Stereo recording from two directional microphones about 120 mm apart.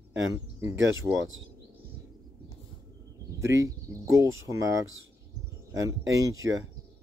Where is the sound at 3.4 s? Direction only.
25° right (ahead or behind).